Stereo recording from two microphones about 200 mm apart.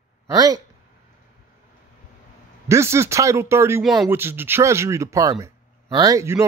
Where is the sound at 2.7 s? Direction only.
15° right (ahead or behind).